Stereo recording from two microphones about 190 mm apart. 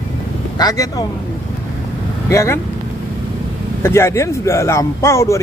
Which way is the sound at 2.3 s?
15° left (ahead or behind).